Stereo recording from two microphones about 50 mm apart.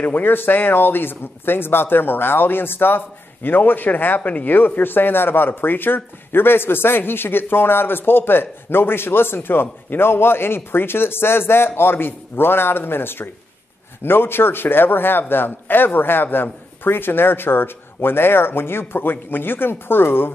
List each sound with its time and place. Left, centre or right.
0.0 s speech: left